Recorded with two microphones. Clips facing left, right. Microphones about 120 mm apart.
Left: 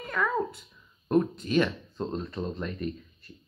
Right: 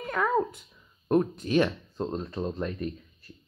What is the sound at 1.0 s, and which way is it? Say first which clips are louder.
Speech: even; 15° right (ahead or behind).